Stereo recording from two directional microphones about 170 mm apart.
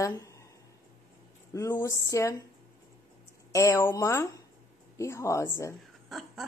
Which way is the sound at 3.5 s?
20° left (ahead or behind).